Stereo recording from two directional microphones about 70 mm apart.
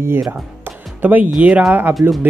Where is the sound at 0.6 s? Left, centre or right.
Right.